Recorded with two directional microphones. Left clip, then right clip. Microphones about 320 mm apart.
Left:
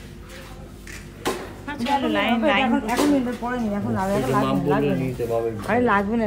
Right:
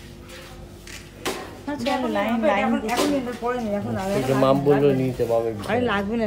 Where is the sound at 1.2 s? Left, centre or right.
Centre.